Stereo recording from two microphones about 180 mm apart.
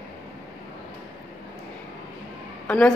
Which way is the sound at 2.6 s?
5° left (ahead or behind).